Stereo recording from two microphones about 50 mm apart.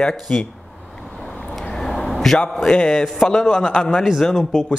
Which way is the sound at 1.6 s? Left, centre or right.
Centre.